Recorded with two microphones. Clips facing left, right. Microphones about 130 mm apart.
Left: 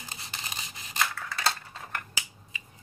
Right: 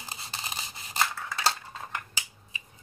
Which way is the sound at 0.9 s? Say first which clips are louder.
Right 1 dB; 30° right (ahead or behind).